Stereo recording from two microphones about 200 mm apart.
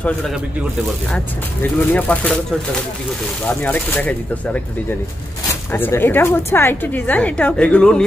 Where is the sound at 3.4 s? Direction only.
10° left (ahead or behind).